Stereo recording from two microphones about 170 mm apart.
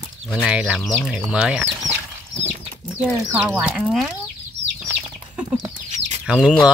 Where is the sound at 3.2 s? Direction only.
15° right (ahead or behind).